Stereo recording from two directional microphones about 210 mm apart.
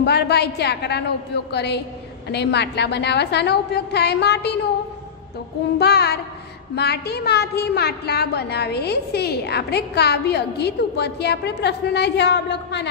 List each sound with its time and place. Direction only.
0.0 s a woman's voice: 50° left (ahead or behind)
5.8 s a woman's voice: 50° left (ahead or behind)